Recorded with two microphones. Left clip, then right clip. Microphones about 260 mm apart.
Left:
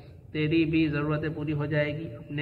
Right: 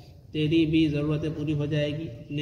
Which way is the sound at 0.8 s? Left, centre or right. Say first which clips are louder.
Right 1 dB; centre.